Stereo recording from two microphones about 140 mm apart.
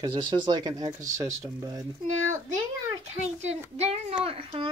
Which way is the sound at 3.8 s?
50° right (ahead or behind).